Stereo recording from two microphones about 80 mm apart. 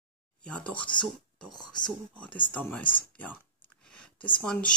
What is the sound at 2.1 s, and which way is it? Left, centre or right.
Speech, centre.